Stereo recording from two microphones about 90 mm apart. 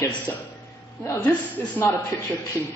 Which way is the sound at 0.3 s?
30° left (ahead or behind).